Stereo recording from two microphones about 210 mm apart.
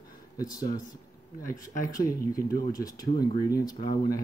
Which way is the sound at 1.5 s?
15° left (ahead or behind).